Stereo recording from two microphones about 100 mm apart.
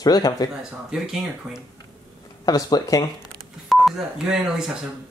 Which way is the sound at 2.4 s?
40° left (ahead or behind).